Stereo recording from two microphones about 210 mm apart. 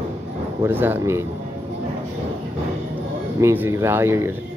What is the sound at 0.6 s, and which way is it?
Speech, 10° right (ahead or behind).